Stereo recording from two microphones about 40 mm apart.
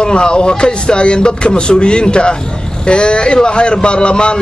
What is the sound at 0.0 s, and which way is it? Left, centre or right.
A man's voice, left.